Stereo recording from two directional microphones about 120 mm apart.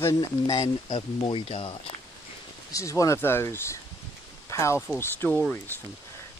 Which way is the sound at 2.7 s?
25° left (ahead or behind).